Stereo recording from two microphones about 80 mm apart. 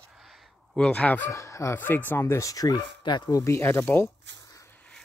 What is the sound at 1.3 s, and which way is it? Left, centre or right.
Speech, left.